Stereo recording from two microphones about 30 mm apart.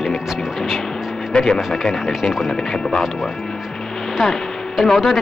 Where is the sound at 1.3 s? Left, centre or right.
Left.